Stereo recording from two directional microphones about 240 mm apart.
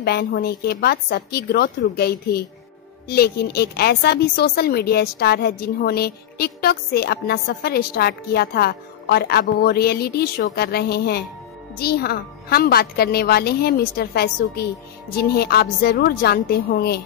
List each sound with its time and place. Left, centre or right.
0.0 s a woman's voice: left